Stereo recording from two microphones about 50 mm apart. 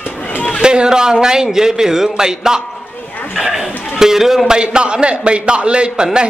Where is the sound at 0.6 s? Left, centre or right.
Centre.